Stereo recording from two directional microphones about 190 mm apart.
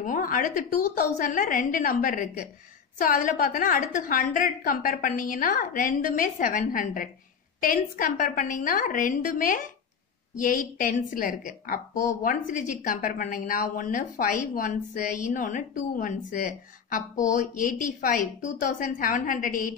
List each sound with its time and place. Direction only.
0.0 s a woman's voice: 45° left (ahead or behind)
11.9 s speech: 15° left (ahead or behind)
12.2 s a woman's voice: 45° left (ahead or behind)